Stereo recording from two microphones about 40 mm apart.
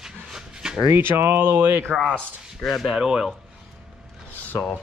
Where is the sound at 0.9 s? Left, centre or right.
Right.